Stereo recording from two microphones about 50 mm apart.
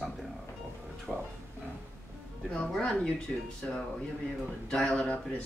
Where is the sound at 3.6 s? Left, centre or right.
Left.